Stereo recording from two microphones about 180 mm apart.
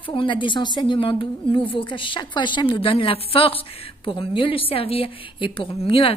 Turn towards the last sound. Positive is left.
turn(degrees=30)  # may be behind; listen again after turning